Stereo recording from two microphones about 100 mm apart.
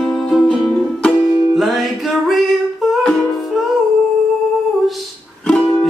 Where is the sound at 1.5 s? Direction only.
Centre (ahead or behind).